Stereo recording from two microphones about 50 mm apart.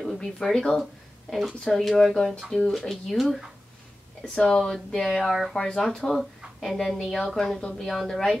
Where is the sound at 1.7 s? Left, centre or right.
Centre.